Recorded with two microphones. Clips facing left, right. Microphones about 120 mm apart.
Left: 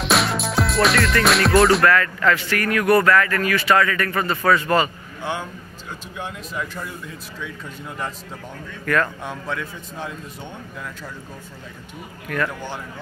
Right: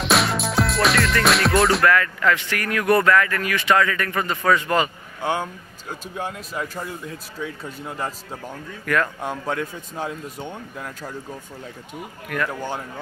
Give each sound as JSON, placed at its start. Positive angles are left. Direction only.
{"t": 0.0, "sound": "music", "side_deg": 0}
{"t": 1.9, "sound": "speech", "side_deg": -15}
{"t": 5.2, "sound": "a man's voice", "side_deg": -45}
{"t": 8.9, "sound": "speech", "side_deg": -15}
{"t": 9.2, "sound": "a man's voice", "side_deg": -40}